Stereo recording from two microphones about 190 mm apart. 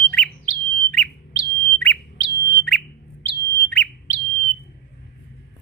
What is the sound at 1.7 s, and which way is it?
Bird, 15° left (ahead or behind).